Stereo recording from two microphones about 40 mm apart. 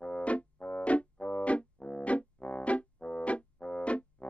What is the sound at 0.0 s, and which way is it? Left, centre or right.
Music, left.